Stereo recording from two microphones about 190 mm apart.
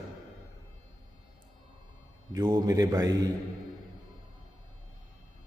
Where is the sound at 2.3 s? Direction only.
20° right (ahead or behind).